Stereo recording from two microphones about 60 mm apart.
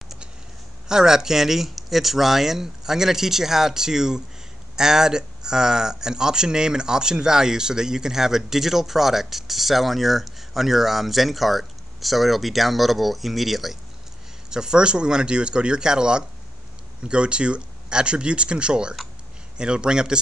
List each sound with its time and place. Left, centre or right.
0.8 s speech: centre